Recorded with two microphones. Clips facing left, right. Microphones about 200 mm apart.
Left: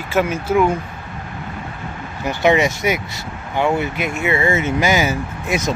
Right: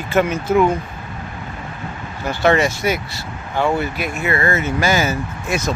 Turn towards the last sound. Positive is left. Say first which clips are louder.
# left 1 dB
turn(degrees=20)  # may be behind; listen again after turning